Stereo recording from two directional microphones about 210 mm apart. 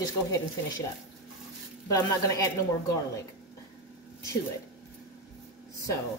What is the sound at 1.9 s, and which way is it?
Speech, 15° left (ahead or behind).